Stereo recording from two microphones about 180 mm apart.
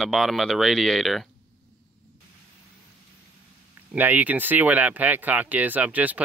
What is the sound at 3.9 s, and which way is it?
Speech, 10° right (ahead or behind).